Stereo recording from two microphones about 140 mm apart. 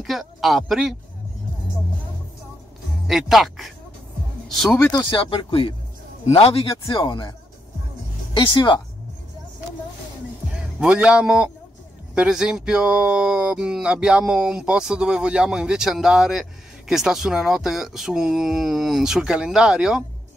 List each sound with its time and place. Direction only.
0.0 s speech: centre (ahead or behind)
3.1 s speech: centre (ahead or behind)
4.7 s speech: 25° left (ahead or behind)
5.1 s a man's voice: 40° left (ahead or behind)
7.0 s speech: 35° left (ahead or behind)
8.4 s speech: 30° left (ahead or behind)
10.8 s a man's voice: 5° right (ahead or behind)